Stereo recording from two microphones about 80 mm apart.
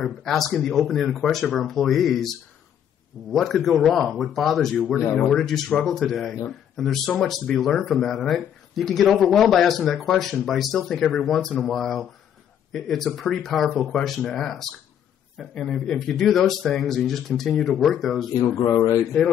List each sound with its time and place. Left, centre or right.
0.0 s speech: centre
18.7 s speech: left